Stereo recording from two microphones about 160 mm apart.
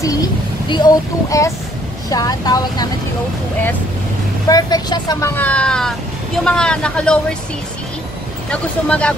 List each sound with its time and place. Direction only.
0.0 s child singing: 20° left (ahead or behind)
2.0 s speech: 25° left (ahead or behind)
4.5 s speech: 25° left (ahead or behind)
5.3 s speech: 10° left (ahead or behind)
8.5 s speech: 5° left (ahead or behind)